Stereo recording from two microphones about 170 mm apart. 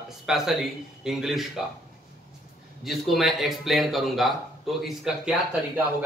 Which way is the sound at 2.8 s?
Centre (ahead or behind).